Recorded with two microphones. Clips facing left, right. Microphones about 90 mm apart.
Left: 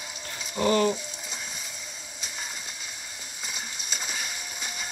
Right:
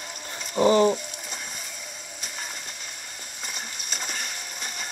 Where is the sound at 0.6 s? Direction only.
20° right (ahead or behind).